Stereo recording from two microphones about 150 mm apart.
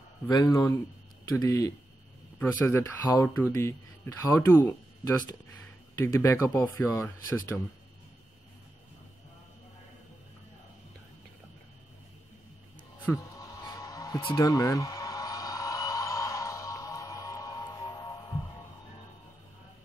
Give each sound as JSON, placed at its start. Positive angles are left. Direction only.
{"t": 0.3, "sound": "speech", "side_deg": 20}
{"t": 6.1, "sound": "speech", "side_deg": 20}
{"t": 13.1, "sound": "speech", "side_deg": 15}
{"t": 13.4, "sound": "music", "side_deg": 25}
{"t": 14.3, "sound": "a sound", "side_deg": 20}